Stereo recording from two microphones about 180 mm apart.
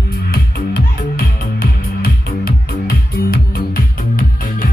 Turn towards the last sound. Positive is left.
turn(degrees=50)  # may be behind; listen again after turning